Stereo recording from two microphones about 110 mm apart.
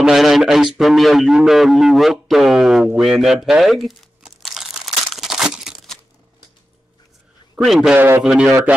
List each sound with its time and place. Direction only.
0.0 s a man's voice: 5° right (ahead or behind)
3.0 s crumpling: 5° right (ahead or behind)
7.5 s speech: centre (ahead or behind)
7.9 s a man's voice: 20° right (ahead or behind)
8.2 s speech: 5° right (ahead or behind)